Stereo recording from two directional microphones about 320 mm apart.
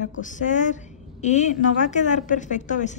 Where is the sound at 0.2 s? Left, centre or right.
Left.